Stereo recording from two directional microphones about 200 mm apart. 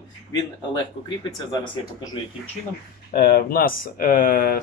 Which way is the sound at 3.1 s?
55° left (ahead or behind).